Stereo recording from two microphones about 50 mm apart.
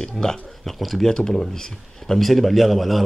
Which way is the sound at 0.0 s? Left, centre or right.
Centre.